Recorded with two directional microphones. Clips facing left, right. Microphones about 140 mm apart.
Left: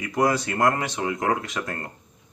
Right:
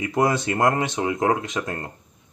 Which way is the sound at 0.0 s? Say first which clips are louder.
Right 1 dB; 25° right (ahead or behind).